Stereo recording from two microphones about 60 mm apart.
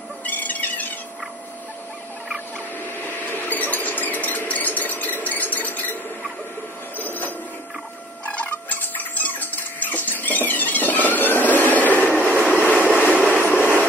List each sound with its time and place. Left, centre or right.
0.2 s a sound: left
3.1 s a sound: left
7.0 s printer: left
8.3 s cat: left
12.1 s train: right
12.6 s vehicle: right
13.0 s train: centre